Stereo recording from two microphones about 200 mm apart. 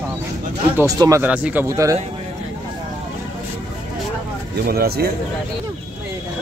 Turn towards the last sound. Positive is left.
turn(degrees=-50)  # may be behind; listen again after turning